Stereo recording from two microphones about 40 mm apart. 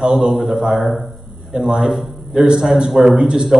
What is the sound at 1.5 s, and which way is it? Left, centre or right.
Speech, centre.